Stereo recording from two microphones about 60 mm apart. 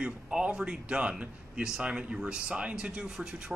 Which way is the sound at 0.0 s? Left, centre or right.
Centre.